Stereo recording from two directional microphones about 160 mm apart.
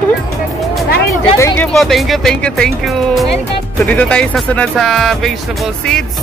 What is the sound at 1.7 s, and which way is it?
Speech, centre (ahead or behind).